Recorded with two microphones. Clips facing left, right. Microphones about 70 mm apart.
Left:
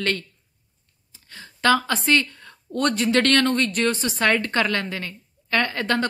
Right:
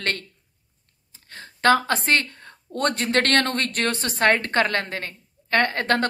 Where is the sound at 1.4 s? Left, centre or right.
Right.